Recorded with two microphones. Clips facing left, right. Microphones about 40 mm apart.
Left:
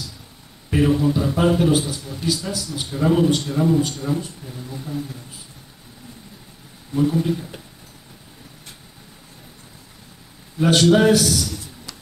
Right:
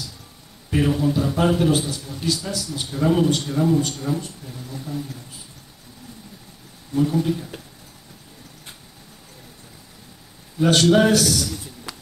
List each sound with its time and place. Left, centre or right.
0.7 s a man's voice: centre
6.9 s a man's voice: centre
10.6 s a man's voice: centre
11.5 s a sound: centre